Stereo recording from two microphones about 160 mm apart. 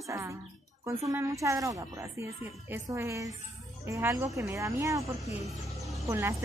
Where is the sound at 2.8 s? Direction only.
20° right (ahead or behind).